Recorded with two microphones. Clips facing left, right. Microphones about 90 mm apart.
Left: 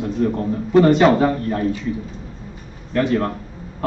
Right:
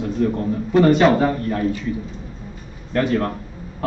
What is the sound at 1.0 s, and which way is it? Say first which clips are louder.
Speech: left 1 dB; 30° left (ahead or behind).